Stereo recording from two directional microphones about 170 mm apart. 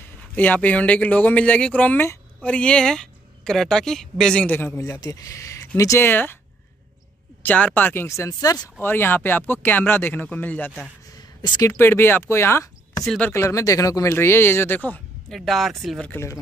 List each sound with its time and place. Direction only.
0.4 s speech: 10° left (ahead or behind)
7.4 s speech: 10° left (ahead or behind)
11.1 s a sound: 25° left (ahead or behind)
11.7 s speech: 15° left (ahead or behind)
13.0 s speech: centre (ahead or behind)
13.3 s speech: 15° left (ahead or behind); by 16.1 s centre (ahead or behind)
16.1 s speech: 15° left (ahead or behind)